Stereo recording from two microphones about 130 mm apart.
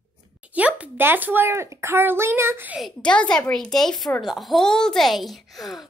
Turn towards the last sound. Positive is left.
turn(degrees=0)  # may be behind; listen again after turning